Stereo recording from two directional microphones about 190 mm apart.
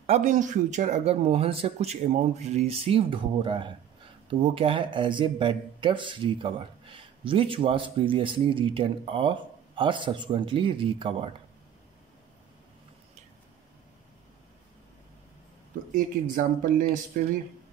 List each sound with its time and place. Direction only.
0.0 s speech: 35° right (ahead or behind)
15.9 s speech: 45° right (ahead or behind)